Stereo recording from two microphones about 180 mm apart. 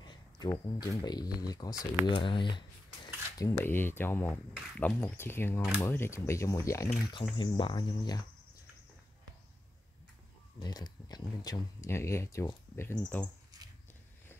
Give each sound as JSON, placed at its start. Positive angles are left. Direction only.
{"t": 0.0, "sound": "speech", "side_deg": 25}
{"t": 10.6, "sound": "speech", "side_deg": 20}
{"t": 13.5, "sound": "a sound", "side_deg": -20}